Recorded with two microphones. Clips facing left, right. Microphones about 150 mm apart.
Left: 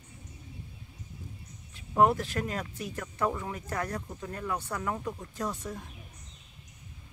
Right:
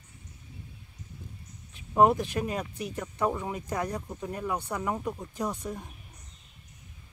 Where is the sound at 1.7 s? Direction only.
15° right (ahead or behind).